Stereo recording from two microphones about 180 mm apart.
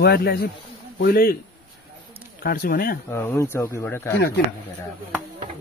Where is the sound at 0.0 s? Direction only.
65° left (ahead or behind).